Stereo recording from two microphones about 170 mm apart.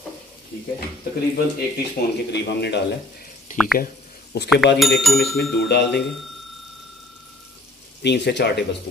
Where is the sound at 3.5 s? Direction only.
50° left (ahead or behind).